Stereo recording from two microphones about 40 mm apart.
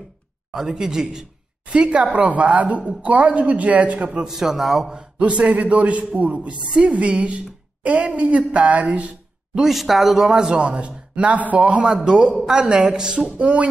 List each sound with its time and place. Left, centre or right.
0.5 s speech: centre
1.7 s a man's voice: right
4.2 s speech: centre
4.9 s speech: right
5.6 s a man's voice: right
9.6 s speech: centre
10.6 s a man's voice: right
11.8 s speech: centre
13.3 s a man's voice: right